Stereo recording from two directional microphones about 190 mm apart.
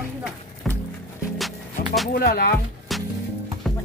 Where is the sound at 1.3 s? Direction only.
Centre (ahead or behind).